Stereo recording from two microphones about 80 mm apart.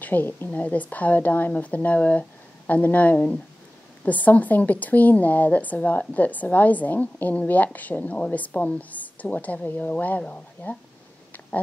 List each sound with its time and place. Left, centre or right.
0.0 s speech: left